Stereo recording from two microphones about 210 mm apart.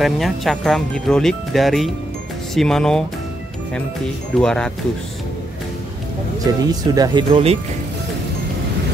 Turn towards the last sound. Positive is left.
turn(degrees=-25)  # may be behind; listen again after turning